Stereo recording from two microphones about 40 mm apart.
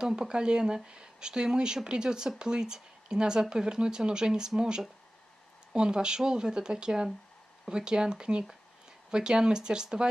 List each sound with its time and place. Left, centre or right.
0.0 s speech: centre